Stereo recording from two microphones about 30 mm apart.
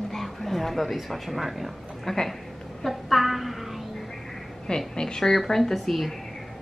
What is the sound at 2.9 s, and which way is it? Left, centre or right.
Speech, centre.